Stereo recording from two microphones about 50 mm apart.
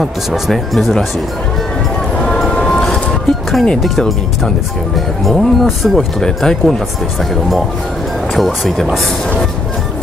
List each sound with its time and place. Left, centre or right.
0.0 s speech: centre
2.4 s music: centre
5.3 s speech: centre
8.4 s speech: centre